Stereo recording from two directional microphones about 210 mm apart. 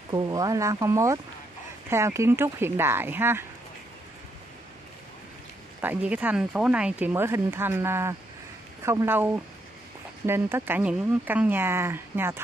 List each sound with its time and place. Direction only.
0.1 s speech: 20° right (ahead or behind)
5.8 s speech: 10° right (ahead or behind)